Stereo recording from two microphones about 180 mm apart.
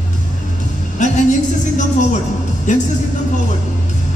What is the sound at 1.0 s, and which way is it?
Music, 40° left (ahead or behind).